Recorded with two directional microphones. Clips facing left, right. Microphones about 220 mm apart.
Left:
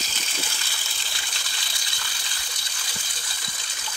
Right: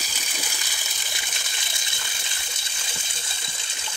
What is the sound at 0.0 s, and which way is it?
Water, 15° right (ahead or behind).